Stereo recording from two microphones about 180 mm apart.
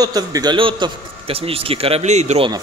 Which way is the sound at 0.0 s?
20° right (ahead or behind).